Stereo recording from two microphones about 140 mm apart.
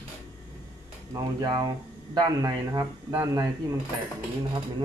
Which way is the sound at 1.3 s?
30° right (ahead or behind).